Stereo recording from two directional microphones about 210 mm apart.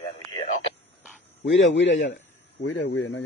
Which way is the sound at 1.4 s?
60° left (ahead or behind).